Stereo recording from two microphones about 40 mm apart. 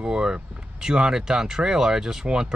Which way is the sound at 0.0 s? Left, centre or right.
Centre.